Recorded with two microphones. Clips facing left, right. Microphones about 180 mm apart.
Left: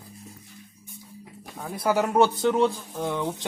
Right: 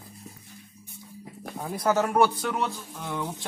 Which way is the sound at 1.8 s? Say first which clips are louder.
Left 1 dB; 10° left (ahead or behind).